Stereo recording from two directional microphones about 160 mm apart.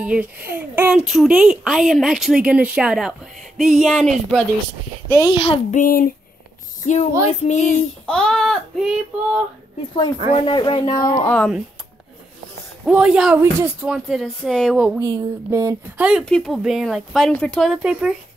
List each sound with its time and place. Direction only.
0.0 s speech: 5° right (ahead or behind)
5.1 s a child's voice: 25° left (ahead or behind)
5.7 s speech: 55° left (ahead or behind)
6.8 s a sound: 50° left (ahead or behind)
8.1 s speech: 5° left (ahead or behind)
10.3 s speech: 30° left (ahead or behind)
11.3 s speech: 5° left (ahead or behind)
12.8 s speech: 5° right (ahead or behind)
13.4 s speech: 15° right (ahead or behind)
13.8 s speech: 5° right (ahead or behind)
15.0 s a sound: 20° right (ahead or behind)
16.0 s speech: 5° right (ahead or behind)